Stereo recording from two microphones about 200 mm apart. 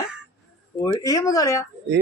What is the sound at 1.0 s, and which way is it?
Speech, 20° left (ahead or behind).